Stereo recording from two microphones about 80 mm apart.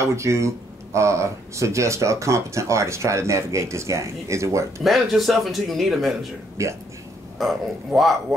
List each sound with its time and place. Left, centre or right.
0.0 s speech: right
4.8 s speech: centre
6.6 s speech: right
7.3 s speech: centre